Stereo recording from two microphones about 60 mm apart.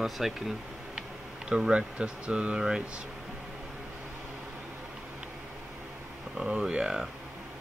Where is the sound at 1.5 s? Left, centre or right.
Centre.